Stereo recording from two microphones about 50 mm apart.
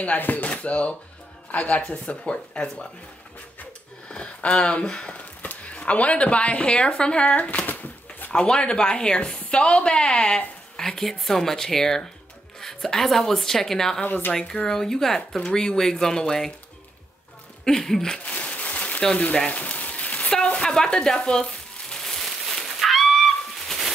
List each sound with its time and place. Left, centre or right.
0.0 s a woman's voice: left
4.1 s a woman's voice: left
5.1 s speech: left
8.3 s a woman's voice: centre
10.8 s a woman's voice: centre
14.0 s speech: left
14.3 s speech: centre
17.6 s speech: centre
18.2 s crumpling: left
19.3 s a woman's voice: left
19.6 s rain on surface: left
20.4 s a sound: left; by 23.9 s centre